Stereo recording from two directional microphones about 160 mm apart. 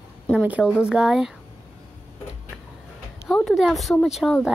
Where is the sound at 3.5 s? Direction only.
Centre (ahead or behind).